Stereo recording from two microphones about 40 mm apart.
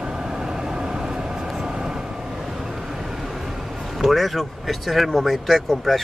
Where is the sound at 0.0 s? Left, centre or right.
Centre.